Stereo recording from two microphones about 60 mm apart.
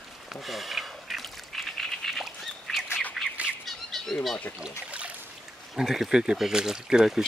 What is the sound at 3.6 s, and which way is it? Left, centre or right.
Squawk, centre.